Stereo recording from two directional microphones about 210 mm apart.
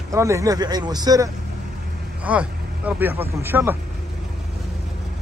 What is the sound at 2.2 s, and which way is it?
Speech, 5° right (ahead or behind).